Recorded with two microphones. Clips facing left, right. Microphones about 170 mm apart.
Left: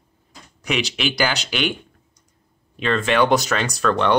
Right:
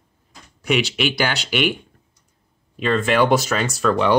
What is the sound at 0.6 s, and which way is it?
Speech, centre (ahead or behind).